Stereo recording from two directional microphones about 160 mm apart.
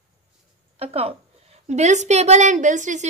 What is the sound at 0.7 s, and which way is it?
A woman's voice, 40° right (ahead or behind).